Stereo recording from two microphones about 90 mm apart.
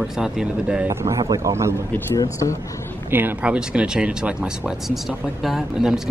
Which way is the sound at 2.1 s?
35° left (ahead or behind).